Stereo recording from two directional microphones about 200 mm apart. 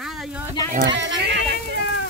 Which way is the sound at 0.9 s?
65° right (ahead or behind).